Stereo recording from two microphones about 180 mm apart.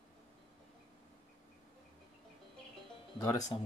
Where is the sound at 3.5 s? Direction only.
25° left (ahead or behind).